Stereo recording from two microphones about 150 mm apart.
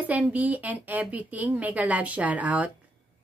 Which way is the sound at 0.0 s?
10° right (ahead or behind).